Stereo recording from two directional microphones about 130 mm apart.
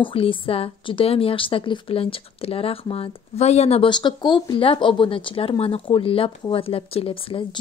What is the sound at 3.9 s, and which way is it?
A woman's voice, 35° left (ahead or behind).